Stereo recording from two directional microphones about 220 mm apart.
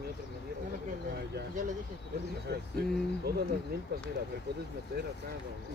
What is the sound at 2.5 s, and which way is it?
Speech, 45° right (ahead or behind).